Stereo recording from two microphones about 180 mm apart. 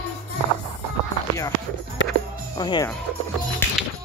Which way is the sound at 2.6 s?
20° left (ahead or behind).